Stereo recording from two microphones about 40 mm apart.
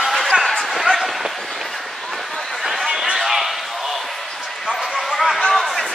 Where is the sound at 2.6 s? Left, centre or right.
Centre.